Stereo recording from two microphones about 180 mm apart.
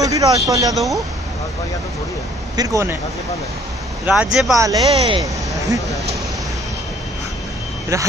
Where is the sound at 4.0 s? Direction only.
5° right (ahead or behind).